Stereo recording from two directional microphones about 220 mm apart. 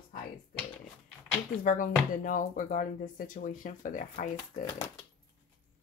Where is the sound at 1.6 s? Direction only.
40° left (ahead or behind).